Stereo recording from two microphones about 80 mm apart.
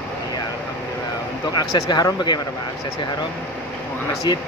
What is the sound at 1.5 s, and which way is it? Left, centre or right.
Speech, left.